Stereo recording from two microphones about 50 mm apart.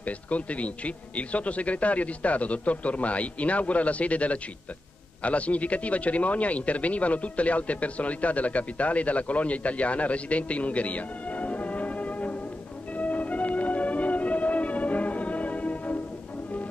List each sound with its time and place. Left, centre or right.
0.0 s a man's voice: left
12.9 s music: left